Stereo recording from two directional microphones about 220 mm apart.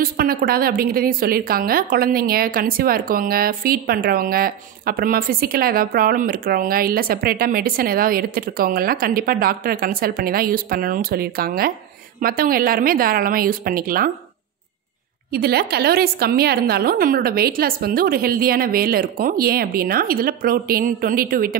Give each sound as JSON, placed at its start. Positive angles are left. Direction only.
{"t": 0.0, "sound": "a woman's voice", "side_deg": -40}
{"t": 15.3, "sound": "a woman's voice", "side_deg": -45}